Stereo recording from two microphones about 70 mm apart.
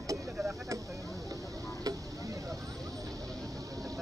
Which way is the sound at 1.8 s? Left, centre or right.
Right.